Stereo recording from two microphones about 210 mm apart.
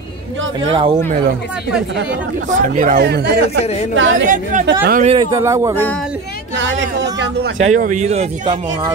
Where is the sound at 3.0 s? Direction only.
50° right (ahead or behind).